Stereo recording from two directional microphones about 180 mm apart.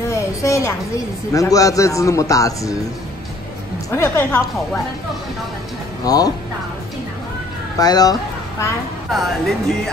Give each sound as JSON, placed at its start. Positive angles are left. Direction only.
{"t": 0.0, "sound": "a sound", "side_deg": 15}
{"t": 1.3, "sound": "a man's voice", "side_deg": 20}
{"t": 3.9, "sound": "a man's voice", "side_deg": 15}
{"t": 6.0, "sound": "speech", "side_deg": 20}
{"t": 7.8, "sound": "speech", "side_deg": 20}
{"t": 9.1, "sound": "speech", "side_deg": 0}